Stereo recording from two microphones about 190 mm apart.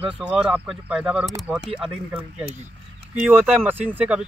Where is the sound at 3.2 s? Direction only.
10° right (ahead or behind).